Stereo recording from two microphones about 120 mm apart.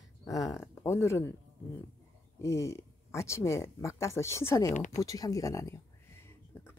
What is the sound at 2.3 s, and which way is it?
Speech, 25° left (ahead or behind).